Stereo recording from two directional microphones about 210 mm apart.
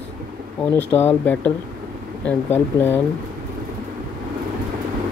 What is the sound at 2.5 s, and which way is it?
Speech, 10° left (ahead or behind).